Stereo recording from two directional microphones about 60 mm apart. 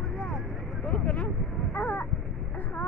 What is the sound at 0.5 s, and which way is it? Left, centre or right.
Vehicle, centre.